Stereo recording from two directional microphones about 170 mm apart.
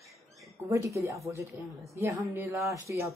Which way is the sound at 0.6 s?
15° right (ahead or behind).